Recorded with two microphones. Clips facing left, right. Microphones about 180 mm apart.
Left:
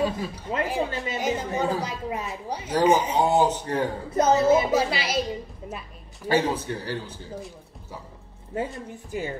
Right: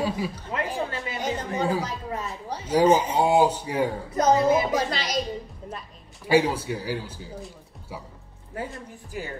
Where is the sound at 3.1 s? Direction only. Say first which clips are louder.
Right 1 dB; 10° right (ahead or behind).